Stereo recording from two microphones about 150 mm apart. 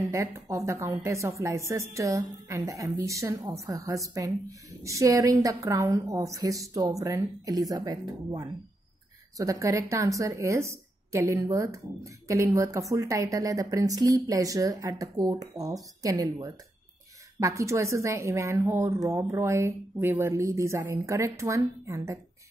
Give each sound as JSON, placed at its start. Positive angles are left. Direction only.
{"t": 0.0, "sound": "speech", "side_deg": -20}